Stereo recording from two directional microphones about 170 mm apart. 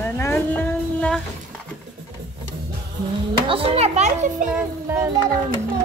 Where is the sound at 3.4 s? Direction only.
30° right (ahead or behind).